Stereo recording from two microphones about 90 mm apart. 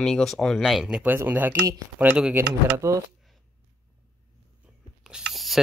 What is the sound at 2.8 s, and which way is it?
Speech, 30° right (ahead or behind).